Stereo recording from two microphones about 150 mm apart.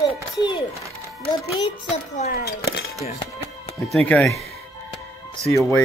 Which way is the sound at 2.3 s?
90° left.